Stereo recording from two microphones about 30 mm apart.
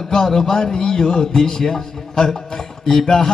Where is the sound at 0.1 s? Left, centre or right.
Centre.